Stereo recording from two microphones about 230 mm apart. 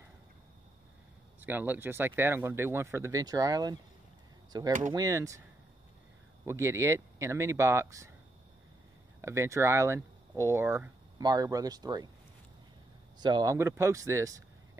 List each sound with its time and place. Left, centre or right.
1.4 s speech: centre
6.4 s speech: centre
9.2 s speech: centre
13.2 s speech: centre